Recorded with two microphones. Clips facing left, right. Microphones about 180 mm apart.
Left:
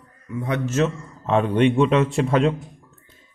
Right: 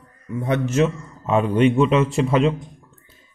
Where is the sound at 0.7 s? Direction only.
10° right (ahead or behind).